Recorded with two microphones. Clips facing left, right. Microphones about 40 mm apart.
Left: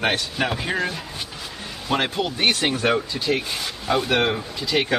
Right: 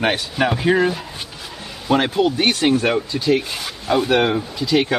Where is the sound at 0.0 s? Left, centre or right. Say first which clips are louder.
Right 4 dB; centre.